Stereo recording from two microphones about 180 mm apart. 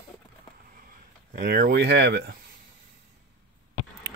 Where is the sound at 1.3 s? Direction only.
60° right (ahead or behind).